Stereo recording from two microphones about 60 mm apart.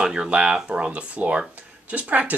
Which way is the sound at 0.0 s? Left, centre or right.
Centre.